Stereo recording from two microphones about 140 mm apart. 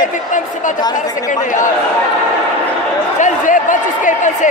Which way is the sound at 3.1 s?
65° left (ahead or behind).